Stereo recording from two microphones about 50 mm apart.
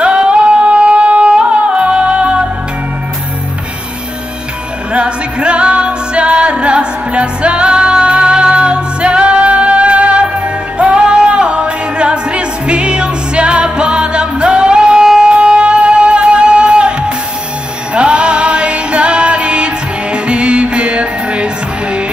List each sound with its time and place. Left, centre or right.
0.0 s music: right
4.9 s music: right
17.9 s music: right